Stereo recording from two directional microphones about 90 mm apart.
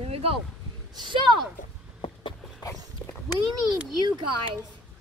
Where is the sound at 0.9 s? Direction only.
60° right (ahead or behind).